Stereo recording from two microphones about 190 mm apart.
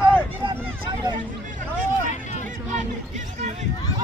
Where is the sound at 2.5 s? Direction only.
40° right (ahead or behind).